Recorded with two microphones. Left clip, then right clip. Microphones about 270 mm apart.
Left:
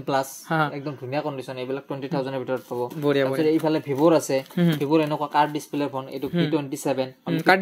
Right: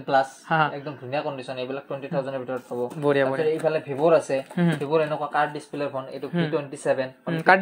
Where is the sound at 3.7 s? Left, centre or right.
Left.